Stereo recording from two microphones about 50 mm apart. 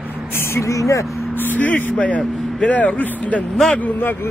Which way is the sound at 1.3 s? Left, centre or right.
Left.